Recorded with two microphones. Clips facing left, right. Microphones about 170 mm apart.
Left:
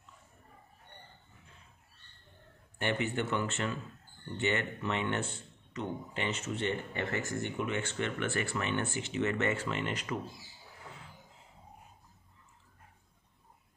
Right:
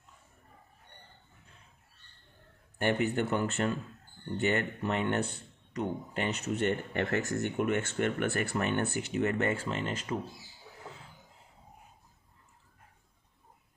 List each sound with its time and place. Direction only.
2.8 s speech: 45° right (ahead or behind)